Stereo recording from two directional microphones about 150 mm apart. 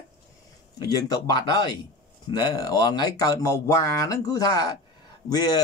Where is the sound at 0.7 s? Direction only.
25° left (ahead or behind).